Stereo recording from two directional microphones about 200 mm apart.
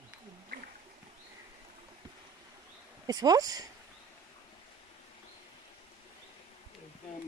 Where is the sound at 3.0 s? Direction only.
20° right (ahead or behind).